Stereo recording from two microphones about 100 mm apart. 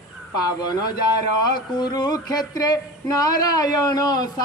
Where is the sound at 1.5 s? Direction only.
45° left (ahead or behind).